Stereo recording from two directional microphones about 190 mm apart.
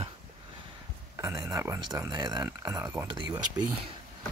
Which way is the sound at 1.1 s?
20° right (ahead or behind).